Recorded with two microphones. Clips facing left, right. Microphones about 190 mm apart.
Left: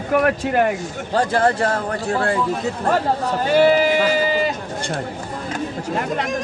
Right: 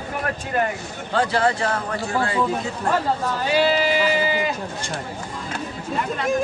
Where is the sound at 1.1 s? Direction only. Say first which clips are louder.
Left 2 dB; 45° left (ahead or behind).